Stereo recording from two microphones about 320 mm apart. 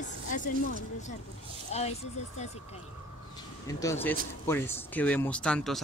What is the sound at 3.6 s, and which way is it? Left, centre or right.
Speech, centre.